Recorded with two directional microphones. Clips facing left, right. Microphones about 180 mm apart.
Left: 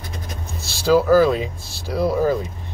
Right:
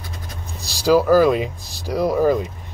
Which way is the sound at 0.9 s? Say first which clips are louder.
Right 1 dB; 10° right (ahead or behind).